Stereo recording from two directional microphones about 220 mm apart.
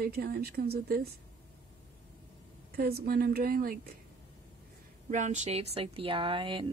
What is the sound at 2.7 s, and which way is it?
Speech, 45° right (ahead or behind).